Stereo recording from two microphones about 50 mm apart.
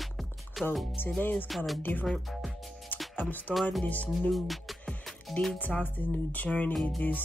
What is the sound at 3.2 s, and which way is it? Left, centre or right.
Music, left.